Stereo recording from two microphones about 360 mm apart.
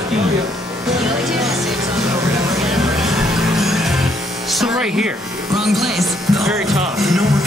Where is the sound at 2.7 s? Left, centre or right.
Centre.